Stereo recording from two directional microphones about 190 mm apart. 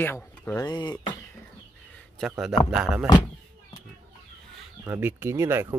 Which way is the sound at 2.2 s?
Centre (ahead or behind).